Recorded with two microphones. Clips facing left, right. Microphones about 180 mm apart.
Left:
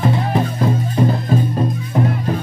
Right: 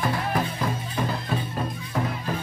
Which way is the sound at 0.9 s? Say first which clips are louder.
Left 10 dB; 45° left (ahead or behind).